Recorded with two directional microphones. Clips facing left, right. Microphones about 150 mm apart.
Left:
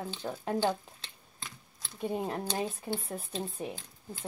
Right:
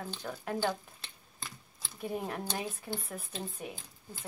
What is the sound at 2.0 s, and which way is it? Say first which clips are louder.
Speech: left 3 dB; 30° left (ahead or behind).